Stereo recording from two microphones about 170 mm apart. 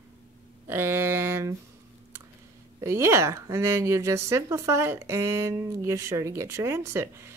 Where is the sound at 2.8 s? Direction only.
15° right (ahead or behind).